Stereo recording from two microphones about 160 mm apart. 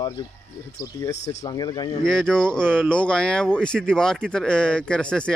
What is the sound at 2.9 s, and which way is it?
Speech, 5° left (ahead or behind).